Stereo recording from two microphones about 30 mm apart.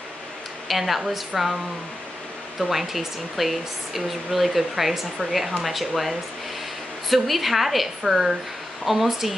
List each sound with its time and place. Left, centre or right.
0.7 s speech: centre
2.6 s speech: centre
8.0 s speech: centre